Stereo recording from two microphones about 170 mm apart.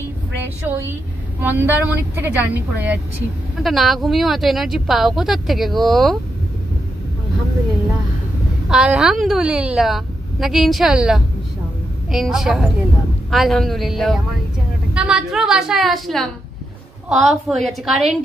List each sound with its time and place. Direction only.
0.7 s a woman's voice: 15° right (ahead or behind)
8.6 s a woman's voice: 5° right (ahead or behind)